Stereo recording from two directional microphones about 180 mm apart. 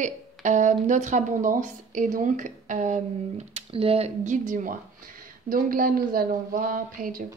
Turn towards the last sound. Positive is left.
turn(degrees=-50)  # may be behind; listen again after turning